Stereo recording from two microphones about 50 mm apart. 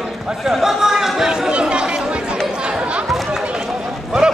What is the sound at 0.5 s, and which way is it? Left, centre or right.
Speech, centre.